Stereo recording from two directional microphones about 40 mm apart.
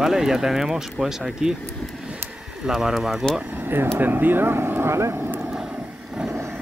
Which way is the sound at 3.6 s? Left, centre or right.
Right.